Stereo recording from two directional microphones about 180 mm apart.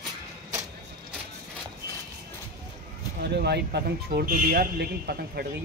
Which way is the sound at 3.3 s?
65° right (ahead or behind).